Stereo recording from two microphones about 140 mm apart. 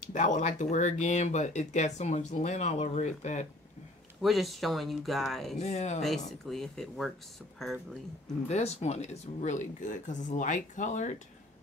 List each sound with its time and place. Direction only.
0.1 s speech: 60° left (ahead or behind)
4.2 s speech: centre (ahead or behind)
5.6 s speech: 55° left (ahead or behind)
6.0 s speech: centre (ahead or behind)
8.5 s speech: 50° left (ahead or behind)